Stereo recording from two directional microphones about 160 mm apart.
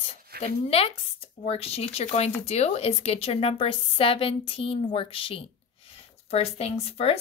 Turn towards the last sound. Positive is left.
turn(degrees=40)  # may be behind; listen again after turning